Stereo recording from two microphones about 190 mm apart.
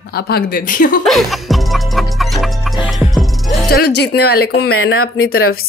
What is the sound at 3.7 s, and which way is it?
Speech, 60° left (ahead or behind).